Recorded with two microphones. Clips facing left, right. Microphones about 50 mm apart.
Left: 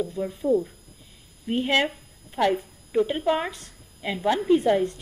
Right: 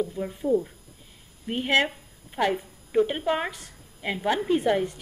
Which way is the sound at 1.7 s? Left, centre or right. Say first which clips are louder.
Right 3 dB; centre.